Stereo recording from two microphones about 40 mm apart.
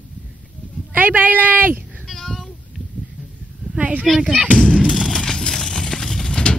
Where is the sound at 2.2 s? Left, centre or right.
Centre.